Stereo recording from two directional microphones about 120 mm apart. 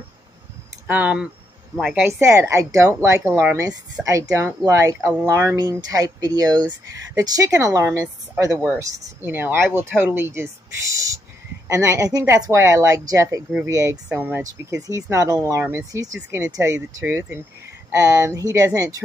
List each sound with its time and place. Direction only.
0.8 s speech: 15° right (ahead or behind)
14.4 s speech: 30° right (ahead or behind)
17.0 s speech: 15° right (ahead or behind)